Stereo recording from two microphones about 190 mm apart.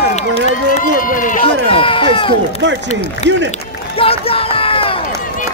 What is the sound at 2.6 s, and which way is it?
Speech, 70° right (ahead or behind).